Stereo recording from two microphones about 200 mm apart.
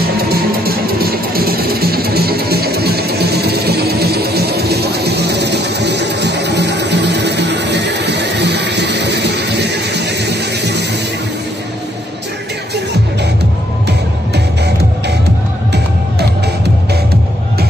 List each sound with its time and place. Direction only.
0.2 s music: 50° right (ahead or behind)